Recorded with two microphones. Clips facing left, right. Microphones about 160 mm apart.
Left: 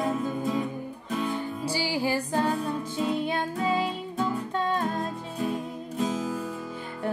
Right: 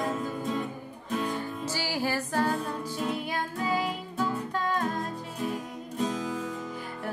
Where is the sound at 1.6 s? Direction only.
15° left (ahead or behind).